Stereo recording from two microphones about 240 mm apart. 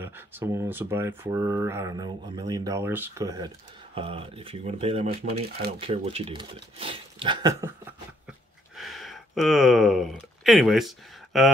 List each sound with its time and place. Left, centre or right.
0.0 s speech: centre
8.7 s speech: centre